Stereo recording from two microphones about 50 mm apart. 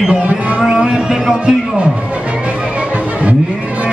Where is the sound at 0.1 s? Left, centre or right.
Centre.